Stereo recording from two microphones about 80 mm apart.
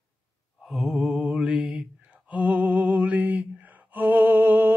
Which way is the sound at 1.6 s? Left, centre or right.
Centre.